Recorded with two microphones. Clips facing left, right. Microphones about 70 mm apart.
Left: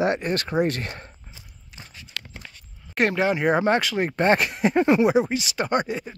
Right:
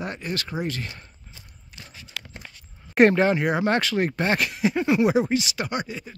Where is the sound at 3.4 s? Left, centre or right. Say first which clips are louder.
Left 2 dB; left.